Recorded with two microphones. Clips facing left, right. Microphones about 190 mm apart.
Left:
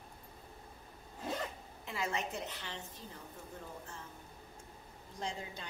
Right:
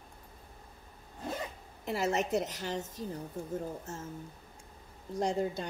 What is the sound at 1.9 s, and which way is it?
A woman's voice, 40° right (ahead or behind).